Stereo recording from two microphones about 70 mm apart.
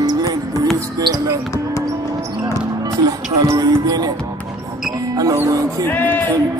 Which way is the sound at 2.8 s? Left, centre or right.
Right.